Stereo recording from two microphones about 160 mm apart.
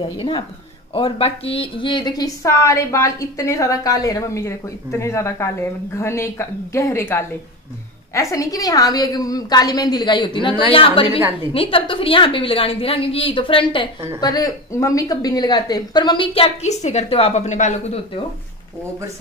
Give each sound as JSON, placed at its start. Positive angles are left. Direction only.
{"t": 0.0, "sound": "a woman's voice", "side_deg": 30}